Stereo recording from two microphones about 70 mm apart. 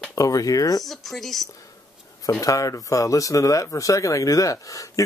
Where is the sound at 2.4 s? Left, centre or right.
Left.